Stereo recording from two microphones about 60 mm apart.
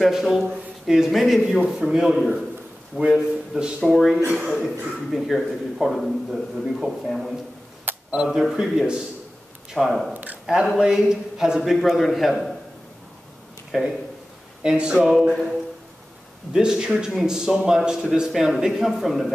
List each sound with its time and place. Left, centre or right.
0.0 s a man's voice: centre
3.2 s a man's voice: centre
3.8 s a man's voice: centre
4.3 s a man's voice: centre
8.1 s a man's voice: centre
9.8 s a man's voice: centre
10.1 s a sound: right
10.4 s a man's voice: centre
13.7 s a man's voice: centre
16.5 s a man's voice: centre